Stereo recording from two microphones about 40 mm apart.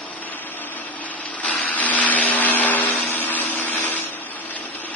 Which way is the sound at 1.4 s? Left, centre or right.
Left.